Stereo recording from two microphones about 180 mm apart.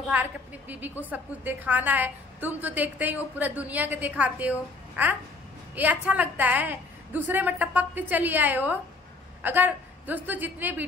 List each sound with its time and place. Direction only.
0.1 s a woman's voice: 10° right (ahead or behind)